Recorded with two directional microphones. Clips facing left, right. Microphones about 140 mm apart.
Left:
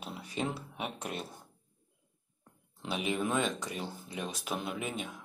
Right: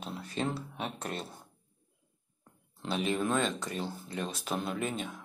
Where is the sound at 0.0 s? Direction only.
10° left (ahead or behind).